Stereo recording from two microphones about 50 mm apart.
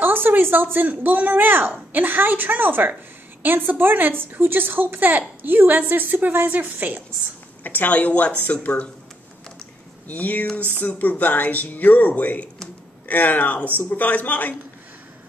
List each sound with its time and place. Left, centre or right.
0.0 s a woman's voice: right
7.6 s speech: left
10.0 s speech: left